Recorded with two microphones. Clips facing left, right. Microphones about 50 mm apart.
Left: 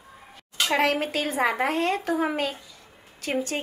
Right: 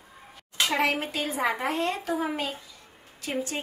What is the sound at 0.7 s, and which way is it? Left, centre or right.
A woman's voice, left.